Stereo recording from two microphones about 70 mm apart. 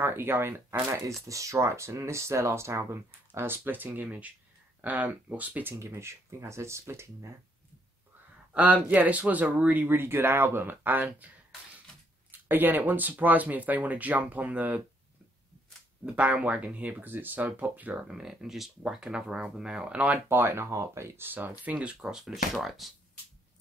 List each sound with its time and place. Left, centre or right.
0.0 s speech: right
0.8 s speech: right
3.3 s speech: right
8.5 s speech: right
12.3 s speech: right
16.1 s speech: centre
18.0 s speech: centre